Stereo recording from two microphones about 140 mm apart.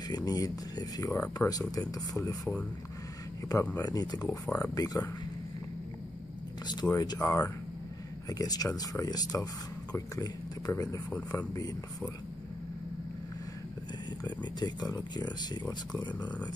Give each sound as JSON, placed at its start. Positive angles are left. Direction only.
{"t": 0.1, "sound": "speech", "side_deg": 25}
{"t": 3.7, "sound": "speech", "side_deg": 25}
{"t": 4.3, "sound": "speech", "side_deg": 15}
{"t": 6.7, "sound": "speech", "side_deg": 25}
{"t": 14.2, "sound": "speech", "side_deg": 30}